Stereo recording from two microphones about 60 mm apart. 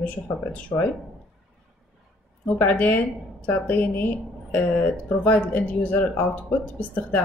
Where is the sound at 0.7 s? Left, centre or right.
Left.